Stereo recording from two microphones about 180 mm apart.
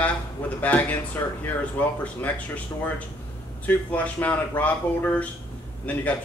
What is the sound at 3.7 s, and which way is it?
Speech, 10° left (ahead or behind).